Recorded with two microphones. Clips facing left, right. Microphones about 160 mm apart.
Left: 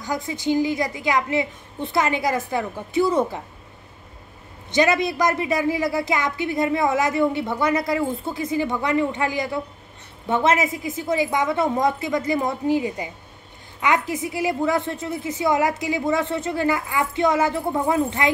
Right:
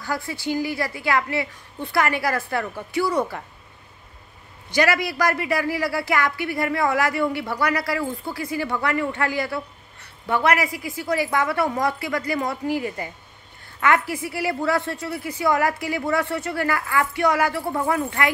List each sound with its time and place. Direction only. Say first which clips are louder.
0.0 s a man's voice: left 2 dB; 20° left (ahead or behind)
4.6 s a man's voice: left 2 dB; 20° left (ahead or behind)